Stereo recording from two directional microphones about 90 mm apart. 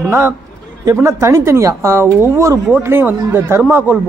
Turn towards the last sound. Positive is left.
turn(degrees=-20)  # may be behind; listen again after turning